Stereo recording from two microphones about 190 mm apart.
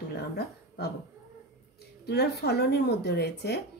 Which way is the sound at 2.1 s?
60° left (ahead or behind).